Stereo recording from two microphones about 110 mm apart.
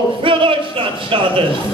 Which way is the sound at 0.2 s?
55° right (ahead or behind).